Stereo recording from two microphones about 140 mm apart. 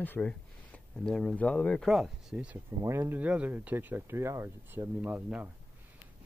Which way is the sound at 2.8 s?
20° right (ahead or behind).